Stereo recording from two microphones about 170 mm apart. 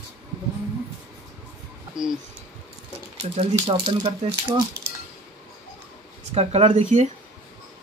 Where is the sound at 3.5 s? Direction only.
30° right (ahead or behind).